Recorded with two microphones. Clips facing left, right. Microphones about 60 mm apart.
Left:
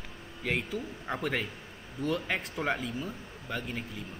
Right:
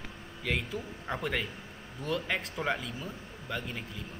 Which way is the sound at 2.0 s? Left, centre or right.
Centre.